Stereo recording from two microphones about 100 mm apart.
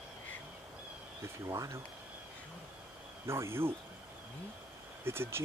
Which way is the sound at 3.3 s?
25° right (ahead or behind).